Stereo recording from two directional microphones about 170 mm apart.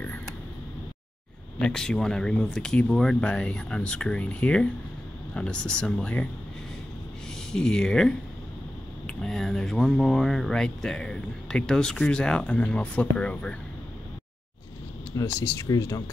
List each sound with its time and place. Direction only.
1.6 s speech: 5° left (ahead or behind)
7.5 s speech: 5° left (ahead or behind)
15.1 s speech: 20° left (ahead or behind)